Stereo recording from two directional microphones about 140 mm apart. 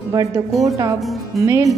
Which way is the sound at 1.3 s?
20° right (ahead or behind).